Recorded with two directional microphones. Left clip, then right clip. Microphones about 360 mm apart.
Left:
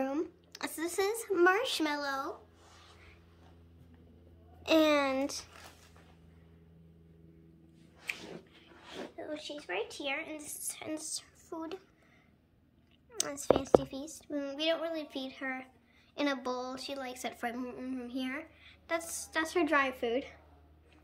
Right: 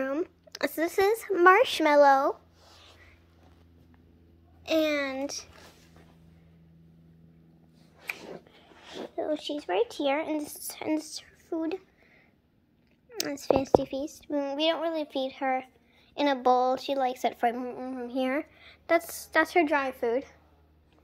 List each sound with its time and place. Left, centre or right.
0.0 s speech: centre
2.6 s a sound: right
4.6 s a woman's voice: centre
8.7 s speech: right; by 11.8 s centre
13.4 s a woman's voice: centre